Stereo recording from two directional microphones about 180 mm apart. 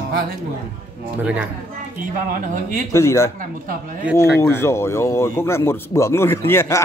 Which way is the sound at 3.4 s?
50° right (ahead or behind).